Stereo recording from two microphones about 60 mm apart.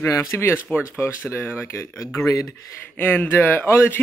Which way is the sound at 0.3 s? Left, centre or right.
Left.